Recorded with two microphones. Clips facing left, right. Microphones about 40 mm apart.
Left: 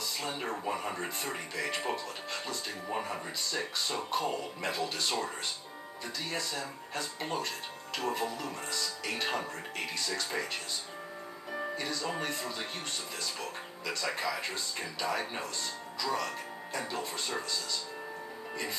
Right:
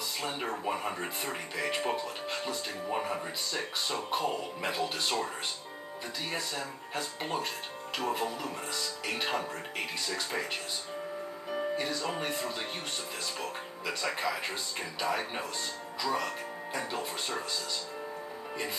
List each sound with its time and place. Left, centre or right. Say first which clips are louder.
0.2 s a sound: right 3 dB; centre
0.5 s speech: right 1 dB; centre
6.3 s speech: even; centre
11.7 s speech: right 2 dB; centre